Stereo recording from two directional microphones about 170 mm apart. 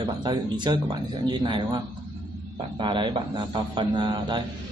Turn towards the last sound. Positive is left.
turn(degrees=-25)  # may be behind; listen again after turning